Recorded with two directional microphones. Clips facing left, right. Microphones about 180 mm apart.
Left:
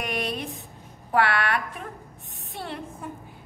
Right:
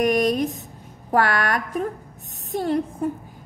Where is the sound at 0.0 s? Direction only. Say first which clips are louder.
Right 11 dB; 40° right (ahead or behind).